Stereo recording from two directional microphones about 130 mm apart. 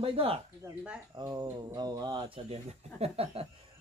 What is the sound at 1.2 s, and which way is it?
Speech, 30° right (ahead or behind).